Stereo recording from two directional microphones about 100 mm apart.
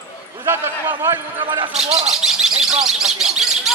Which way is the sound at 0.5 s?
25° right (ahead or behind).